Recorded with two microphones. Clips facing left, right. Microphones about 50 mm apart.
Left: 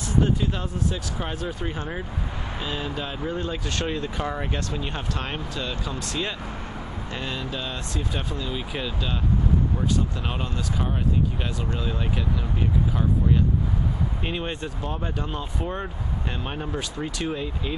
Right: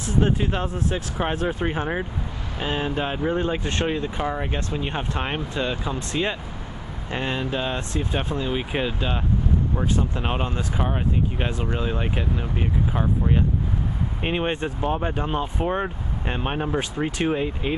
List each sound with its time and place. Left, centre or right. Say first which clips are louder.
0.2 s speech: right 3 dB; right